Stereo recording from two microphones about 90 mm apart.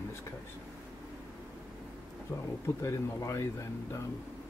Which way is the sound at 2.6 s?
35° left (ahead or behind).